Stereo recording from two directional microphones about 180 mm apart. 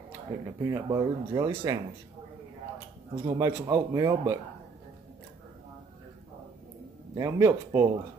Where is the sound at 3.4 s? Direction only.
20° right (ahead or behind).